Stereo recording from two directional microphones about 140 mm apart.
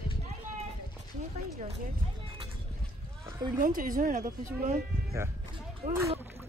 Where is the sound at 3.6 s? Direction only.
80° right.